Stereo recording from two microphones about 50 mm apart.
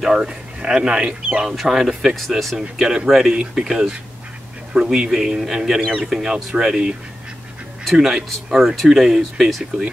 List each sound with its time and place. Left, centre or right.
0.0 s speech: centre
1.5 s speech: centre
2.1 s speech: centre
2.5 s speech: centre